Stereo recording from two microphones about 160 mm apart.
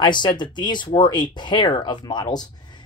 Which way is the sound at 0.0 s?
30° left (ahead or behind).